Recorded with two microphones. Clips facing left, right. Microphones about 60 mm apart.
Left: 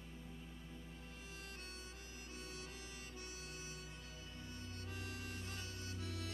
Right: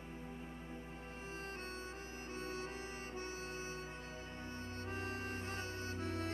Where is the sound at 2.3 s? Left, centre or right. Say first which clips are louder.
Right 9 dB; right.